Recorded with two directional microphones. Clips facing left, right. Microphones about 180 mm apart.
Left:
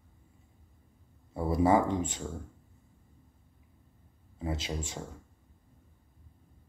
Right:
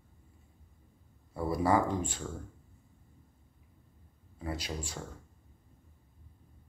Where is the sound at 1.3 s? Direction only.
20° left (ahead or behind).